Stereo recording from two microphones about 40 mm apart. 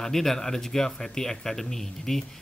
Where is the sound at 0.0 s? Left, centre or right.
Centre.